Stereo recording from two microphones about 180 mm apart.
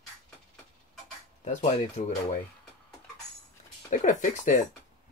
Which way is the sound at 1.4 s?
40° left (ahead or behind).